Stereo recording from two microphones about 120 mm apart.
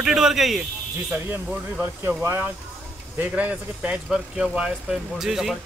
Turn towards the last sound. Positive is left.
turn(degrees=0)  # may be behind; listen again after turning